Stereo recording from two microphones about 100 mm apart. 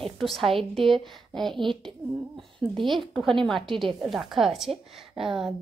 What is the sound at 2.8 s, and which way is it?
A woman's voice, centre (ahead or behind).